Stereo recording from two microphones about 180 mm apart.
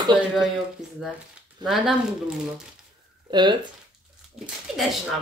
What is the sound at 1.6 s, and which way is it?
Speech, centre (ahead or behind).